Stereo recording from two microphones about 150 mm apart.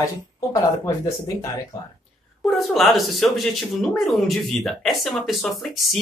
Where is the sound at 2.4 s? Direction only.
Centre (ahead or behind).